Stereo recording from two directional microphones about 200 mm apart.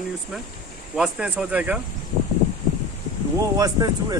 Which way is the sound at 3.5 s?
20° right (ahead or behind).